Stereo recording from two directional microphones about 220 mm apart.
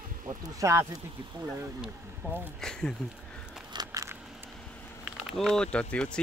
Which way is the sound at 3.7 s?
15° right (ahead or behind).